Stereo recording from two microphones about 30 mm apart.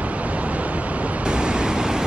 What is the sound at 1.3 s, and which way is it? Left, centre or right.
Waves, right.